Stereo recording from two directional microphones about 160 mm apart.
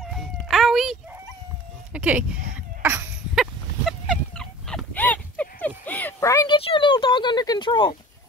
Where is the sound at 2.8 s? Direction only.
15° right (ahead or behind).